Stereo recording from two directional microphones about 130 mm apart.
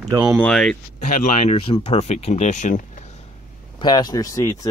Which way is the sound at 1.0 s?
75° left (ahead or behind).